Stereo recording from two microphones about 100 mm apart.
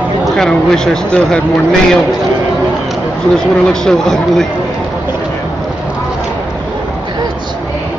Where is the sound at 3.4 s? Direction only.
5° left (ahead or behind).